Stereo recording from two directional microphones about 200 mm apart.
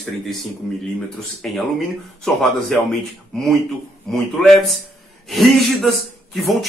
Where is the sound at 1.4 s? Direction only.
Centre (ahead or behind).